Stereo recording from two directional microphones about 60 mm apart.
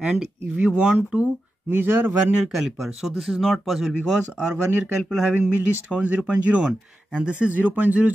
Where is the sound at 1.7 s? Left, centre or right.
Right.